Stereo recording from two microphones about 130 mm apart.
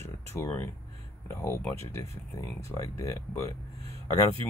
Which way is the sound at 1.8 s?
20° left (ahead or behind).